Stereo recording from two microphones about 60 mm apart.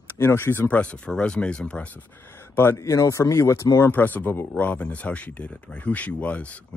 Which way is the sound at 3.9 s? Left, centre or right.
Left.